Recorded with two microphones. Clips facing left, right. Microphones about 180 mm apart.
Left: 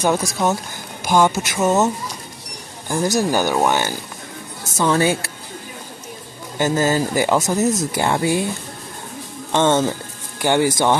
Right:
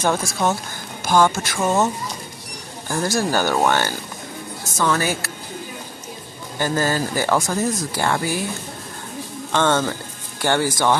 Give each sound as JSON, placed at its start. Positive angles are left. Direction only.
{"t": 0.0, "sound": "speech", "side_deg": 15}
{"t": 1.6, "sound": "speech", "side_deg": 5}
{"t": 2.9, "sound": "speech", "side_deg": 15}
{"t": 4.7, "sound": "speech", "side_deg": 25}
{"t": 6.6, "sound": "speech", "side_deg": 20}
{"t": 9.5, "sound": "speech", "side_deg": 20}